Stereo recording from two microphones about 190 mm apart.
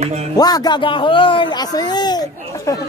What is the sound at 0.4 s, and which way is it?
A man's voice, 20° left (ahead or behind).